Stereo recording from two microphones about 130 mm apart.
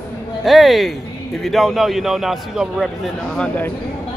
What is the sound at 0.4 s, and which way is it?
Speech, centre (ahead or behind).